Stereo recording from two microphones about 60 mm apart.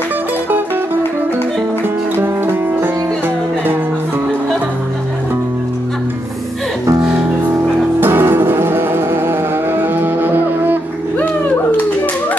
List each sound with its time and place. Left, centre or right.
2.1 s music: right
8.0 s music: right
11.1 s a sound: left